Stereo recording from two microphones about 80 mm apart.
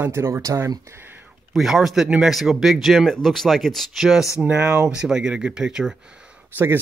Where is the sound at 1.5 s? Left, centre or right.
Centre.